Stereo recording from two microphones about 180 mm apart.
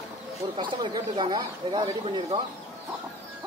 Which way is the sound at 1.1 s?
25° right (ahead or behind).